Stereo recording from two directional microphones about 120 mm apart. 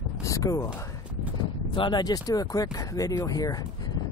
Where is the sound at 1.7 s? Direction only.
40° left (ahead or behind).